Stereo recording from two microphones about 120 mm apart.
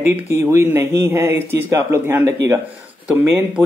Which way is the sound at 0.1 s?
25° right (ahead or behind).